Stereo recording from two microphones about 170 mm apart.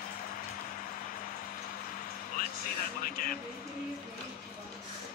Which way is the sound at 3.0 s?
55° left (ahead or behind).